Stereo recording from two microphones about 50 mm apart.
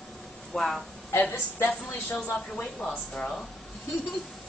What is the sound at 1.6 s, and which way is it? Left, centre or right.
Speech, left.